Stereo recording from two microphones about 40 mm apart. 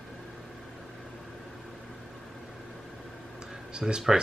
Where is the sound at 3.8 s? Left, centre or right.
Right.